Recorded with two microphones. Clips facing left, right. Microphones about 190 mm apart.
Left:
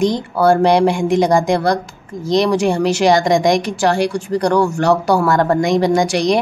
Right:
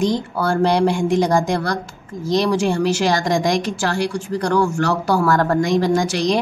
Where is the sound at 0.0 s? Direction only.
15° left (ahead or behind).